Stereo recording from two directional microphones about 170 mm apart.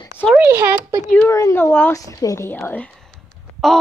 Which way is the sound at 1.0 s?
10° left (ahead or behind).